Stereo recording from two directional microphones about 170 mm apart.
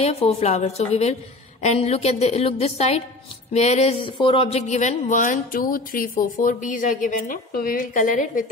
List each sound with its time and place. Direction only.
0.0 s a woman's voice: 35° left (ahead or behind)